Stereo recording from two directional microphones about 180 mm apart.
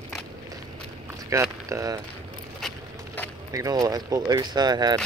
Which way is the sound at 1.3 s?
15° right (ahead or behind).